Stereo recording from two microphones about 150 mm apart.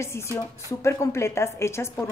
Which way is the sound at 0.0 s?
20° left (ahead or behind).